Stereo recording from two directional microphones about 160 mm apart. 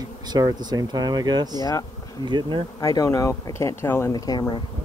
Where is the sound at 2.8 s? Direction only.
20° left (ahead or behind).